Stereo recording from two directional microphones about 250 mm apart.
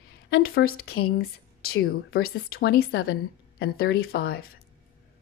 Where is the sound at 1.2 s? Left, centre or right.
Left.